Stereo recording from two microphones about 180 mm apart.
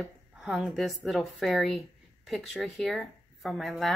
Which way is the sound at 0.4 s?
Centre (ahead or behind).